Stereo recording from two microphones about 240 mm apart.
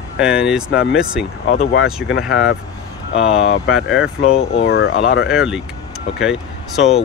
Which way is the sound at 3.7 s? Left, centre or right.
Centre.